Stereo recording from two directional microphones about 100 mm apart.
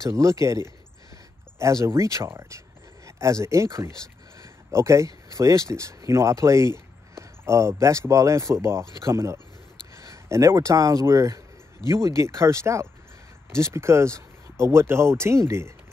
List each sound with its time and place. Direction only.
0.0 s speech: 30° right (ahead or behind)